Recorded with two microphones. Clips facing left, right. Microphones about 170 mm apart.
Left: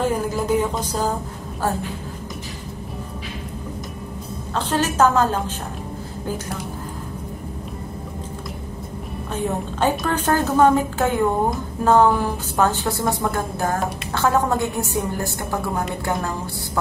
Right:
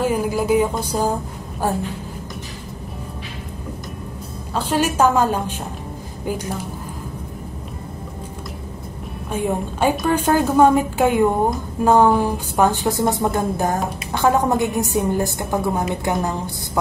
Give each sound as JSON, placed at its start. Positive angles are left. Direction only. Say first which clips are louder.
{"t": 0.0, "sound": "a woman's voice", "louder": "right 2 dB", "side_deg": -10}
{"t": 4.6, "sound": "a woman's voice", "louder": "right 1 dB", "side_deg": -10}
{"t": 9.3, "sound": "a woman's voice", "louder": "right 3 dB", "side_deg": -10}